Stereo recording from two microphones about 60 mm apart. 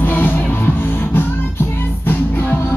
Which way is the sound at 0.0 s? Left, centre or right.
Left.